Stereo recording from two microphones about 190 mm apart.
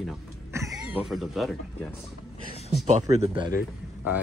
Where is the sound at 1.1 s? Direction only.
Centre (ahead or behind).